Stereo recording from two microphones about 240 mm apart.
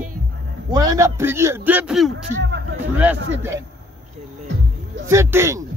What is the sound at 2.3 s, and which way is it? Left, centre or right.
Speech, right.